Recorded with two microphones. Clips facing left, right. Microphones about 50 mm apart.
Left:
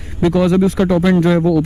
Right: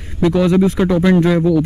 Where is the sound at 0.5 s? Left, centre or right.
Right.